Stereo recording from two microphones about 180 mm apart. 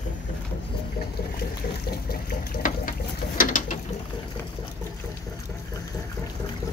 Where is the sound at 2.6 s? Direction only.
50° left (ahead or behind).